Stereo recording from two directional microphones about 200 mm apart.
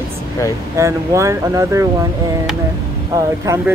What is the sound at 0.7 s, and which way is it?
Speech, 15° right (ahead or behind).